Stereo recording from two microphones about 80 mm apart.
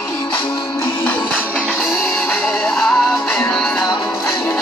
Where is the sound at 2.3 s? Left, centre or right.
Centre.